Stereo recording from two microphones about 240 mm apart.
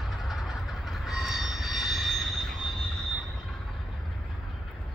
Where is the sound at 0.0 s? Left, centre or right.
Centre.